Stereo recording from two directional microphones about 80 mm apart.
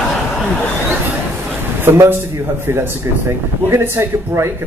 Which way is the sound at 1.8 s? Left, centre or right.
Right.